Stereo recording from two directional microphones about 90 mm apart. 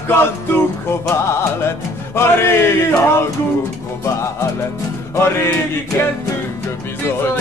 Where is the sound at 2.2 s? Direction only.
30° left (ahead or behind).